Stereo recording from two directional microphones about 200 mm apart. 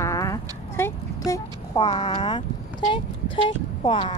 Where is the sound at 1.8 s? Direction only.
25° left (ahead or behind).